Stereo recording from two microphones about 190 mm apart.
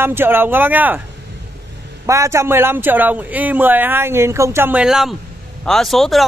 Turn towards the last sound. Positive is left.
turn(degrees=0)  # may be behind; listen again after turning